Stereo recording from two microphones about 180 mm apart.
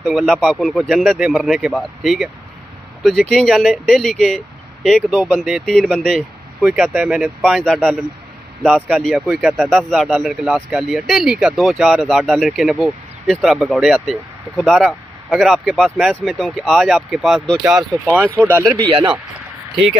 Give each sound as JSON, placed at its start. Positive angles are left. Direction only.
{"t": 0.0, "sound": "speech", "side_deg": 0}
{"t": 18.9, "sound": "speech", "side_deg": -25}